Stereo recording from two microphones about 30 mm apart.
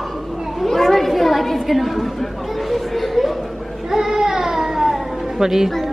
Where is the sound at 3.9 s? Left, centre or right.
Centre.